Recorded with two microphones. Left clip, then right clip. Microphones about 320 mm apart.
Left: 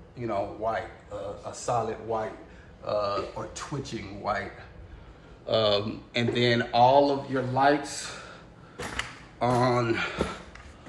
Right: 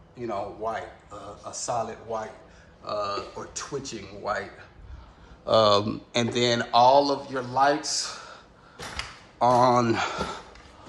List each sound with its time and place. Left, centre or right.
0.3 s speech: centre
5.5 s speech: centre
9.4 s speech: centre